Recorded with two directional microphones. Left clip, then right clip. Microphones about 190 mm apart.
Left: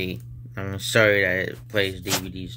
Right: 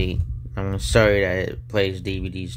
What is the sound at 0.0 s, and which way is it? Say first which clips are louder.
Speech: right 2 dB; 15° right (ahead or behind).